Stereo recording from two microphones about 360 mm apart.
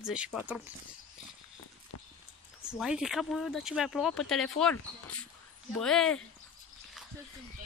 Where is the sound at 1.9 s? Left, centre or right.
Left.